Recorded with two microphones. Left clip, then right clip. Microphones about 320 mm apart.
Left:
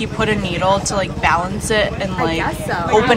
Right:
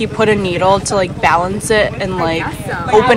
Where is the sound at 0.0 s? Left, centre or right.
Centre.